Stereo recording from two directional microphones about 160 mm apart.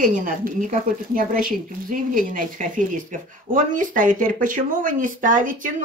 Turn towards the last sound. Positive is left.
turn(degrees=-55)  # may be behind; listen again after turning